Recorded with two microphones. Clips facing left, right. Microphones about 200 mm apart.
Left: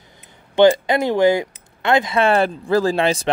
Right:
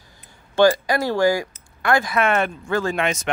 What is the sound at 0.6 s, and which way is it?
Speech, 20° left (ahead or behind).